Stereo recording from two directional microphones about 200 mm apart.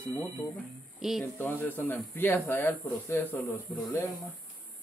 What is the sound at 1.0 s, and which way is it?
Speech, 5° right (ahead or behind).